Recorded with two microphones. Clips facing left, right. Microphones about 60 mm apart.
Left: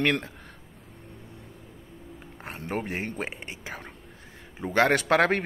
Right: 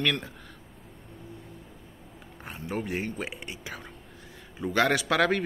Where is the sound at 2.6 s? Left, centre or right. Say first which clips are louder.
Even; left.